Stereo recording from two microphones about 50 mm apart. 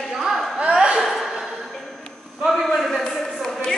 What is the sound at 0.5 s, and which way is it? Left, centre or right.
Chuckle, right.